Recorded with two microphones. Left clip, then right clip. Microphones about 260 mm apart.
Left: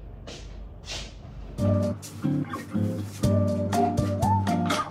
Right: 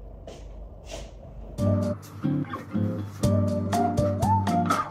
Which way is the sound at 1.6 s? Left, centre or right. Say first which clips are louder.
Left 1 dB; centre.